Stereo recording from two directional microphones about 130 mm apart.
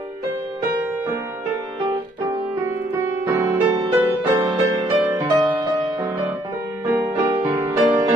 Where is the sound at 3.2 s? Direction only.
25° right (ahead or behind).